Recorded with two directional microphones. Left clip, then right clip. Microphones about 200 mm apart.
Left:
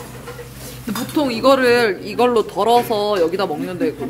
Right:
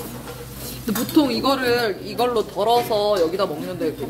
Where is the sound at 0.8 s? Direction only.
10° left (ahead or behind).